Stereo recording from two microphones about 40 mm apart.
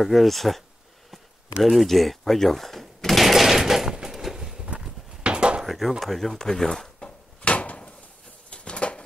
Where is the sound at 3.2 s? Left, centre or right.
Centre.